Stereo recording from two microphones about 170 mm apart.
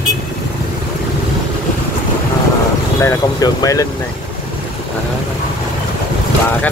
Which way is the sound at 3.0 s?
20° left (ahead or behind).